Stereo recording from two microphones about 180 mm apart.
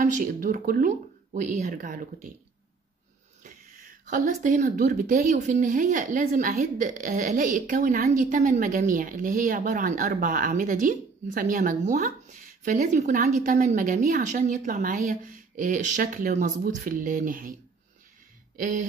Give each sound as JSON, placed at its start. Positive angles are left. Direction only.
{"t": 0.0, "sound": "speech", "side_deg": -45}
{"t": 3.4, "sound": "speech", "side_deg": -50}
{"t": 18.6, "sound": "speech", "side_deg": -45}